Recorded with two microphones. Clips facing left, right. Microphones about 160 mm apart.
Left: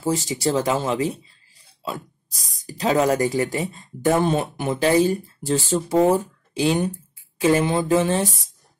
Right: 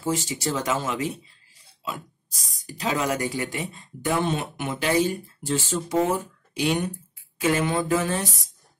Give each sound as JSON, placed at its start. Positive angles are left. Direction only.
{"t": 0.0, "sound": "speech", "side_deg": 35}
{"t": 2.6, "sound": "speech", "side_deg": 40}
{"t": 7.3, "sound": "a sound", "side_deg": 30}